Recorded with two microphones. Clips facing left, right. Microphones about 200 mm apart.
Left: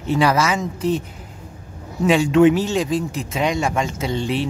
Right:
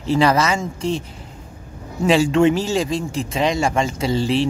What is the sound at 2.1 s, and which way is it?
Speech, centre (ahead or behind).